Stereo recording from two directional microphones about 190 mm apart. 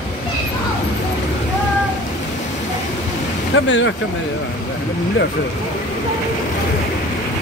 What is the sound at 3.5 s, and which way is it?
Speech, 75° left (ahead or behind).